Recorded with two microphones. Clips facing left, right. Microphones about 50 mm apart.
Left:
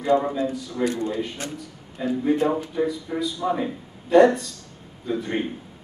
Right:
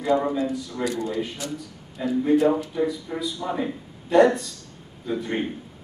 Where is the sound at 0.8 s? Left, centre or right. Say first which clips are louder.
Left 2 dB; left.